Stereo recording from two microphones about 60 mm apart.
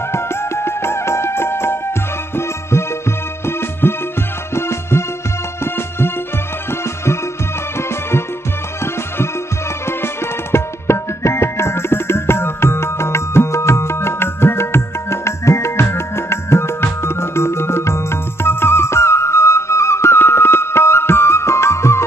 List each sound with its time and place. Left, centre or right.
0.1 s music: left
9.8 s music: left